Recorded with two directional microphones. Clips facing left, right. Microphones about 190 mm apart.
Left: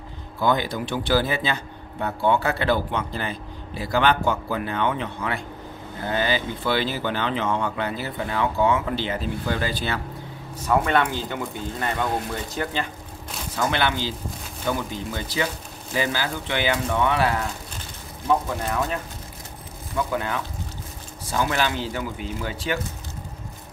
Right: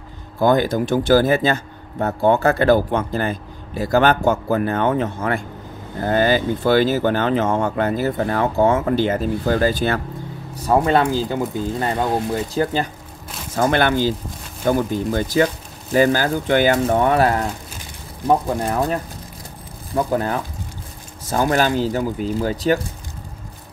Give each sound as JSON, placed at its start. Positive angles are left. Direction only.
{"t": 0.4, "sound": "speech", "side_deg": -45}
{"t": 10.6, "sound": "speech", "side_deg": -35}
{"t": 13.6, "sound": "speech", "side_deg": -45}